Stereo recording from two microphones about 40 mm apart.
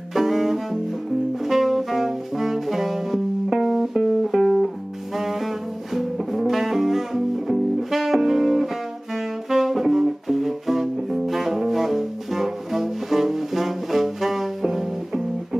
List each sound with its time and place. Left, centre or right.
0.1 s music: centre
1.4 s saxophone: centre
5.9 s music: centre